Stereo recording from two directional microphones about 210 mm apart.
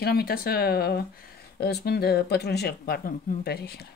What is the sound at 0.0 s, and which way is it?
Speech, 50° left (ahead or behind).